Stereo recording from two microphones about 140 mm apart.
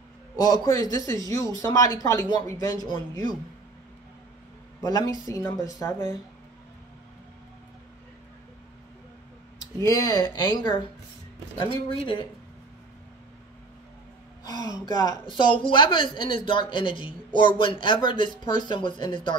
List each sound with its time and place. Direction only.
0.4 s speech: 30° left (ahead or behind)
4.8 s speech: 25° left (ahead or behind)
9.8 s a woman's voice: 25° left (ahead or behind)
14.4 s a woman's voice: 30° left (ahead or behind)